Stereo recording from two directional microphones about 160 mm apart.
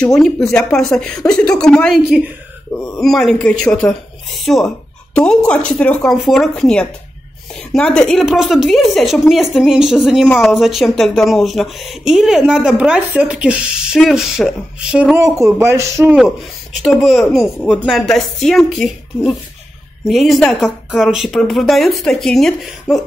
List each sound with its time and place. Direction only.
0.0 s a woman's voice: 5° left (ahead or behind)
10.2 s a woman's voice: 5° left (ahead or behind)
15.1 s a man's voice: 20° right (ahead or behind)
16.8 s a woman's voice: centre (ahead or behind)